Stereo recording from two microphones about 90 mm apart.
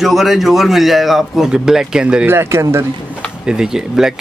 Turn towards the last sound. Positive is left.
turn(degrees=-5)  # may be behind; listen again after turning